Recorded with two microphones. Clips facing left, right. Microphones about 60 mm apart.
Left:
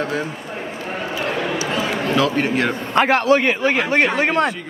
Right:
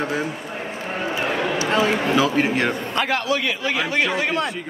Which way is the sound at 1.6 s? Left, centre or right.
Right.